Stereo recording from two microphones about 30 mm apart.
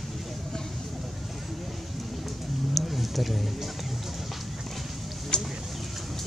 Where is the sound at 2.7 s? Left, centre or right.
Centre.